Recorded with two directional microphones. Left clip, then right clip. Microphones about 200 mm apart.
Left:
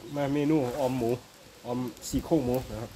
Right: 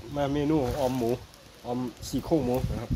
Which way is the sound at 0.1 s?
Centre (ahead or behind).